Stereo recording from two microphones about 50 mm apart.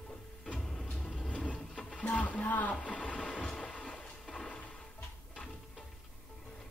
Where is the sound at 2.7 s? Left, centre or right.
Left.